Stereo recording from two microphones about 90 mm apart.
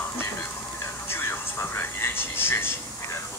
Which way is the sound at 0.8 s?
30° left (ahead or behind).